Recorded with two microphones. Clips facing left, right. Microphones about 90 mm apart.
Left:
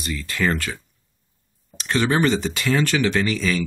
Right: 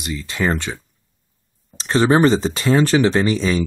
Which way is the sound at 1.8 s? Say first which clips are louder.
Right 6 dB; 30° right (ahead or behind).